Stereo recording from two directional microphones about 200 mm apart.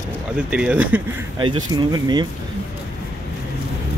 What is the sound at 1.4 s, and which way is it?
Speech, 25° right (ahead or behind).